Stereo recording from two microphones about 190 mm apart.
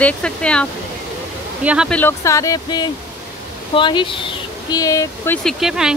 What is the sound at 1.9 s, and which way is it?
Speech, 10° left (ahead or behind).